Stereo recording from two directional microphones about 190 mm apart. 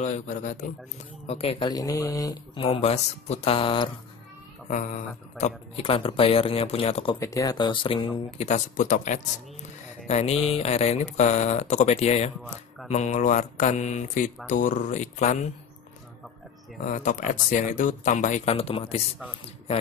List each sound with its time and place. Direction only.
1.2 s speech: 30° left (ahead or behind)
2.6 s speech: 35° left (ahead or behind)
4.6 s speech: 40° left (ahead or behind)
7.2 s speech: 15° left (ahead or behind); by 15.5 s 35° left (ahead or behind)
16.8 s speech: 40° left (ahead or behind)